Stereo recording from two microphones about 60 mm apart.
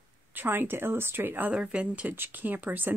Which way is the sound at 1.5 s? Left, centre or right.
Centre.